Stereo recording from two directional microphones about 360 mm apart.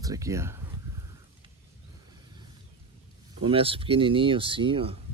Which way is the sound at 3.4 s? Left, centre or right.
Centre.